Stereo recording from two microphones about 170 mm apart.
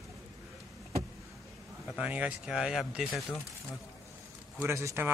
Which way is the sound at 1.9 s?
10° right (ahead or behind).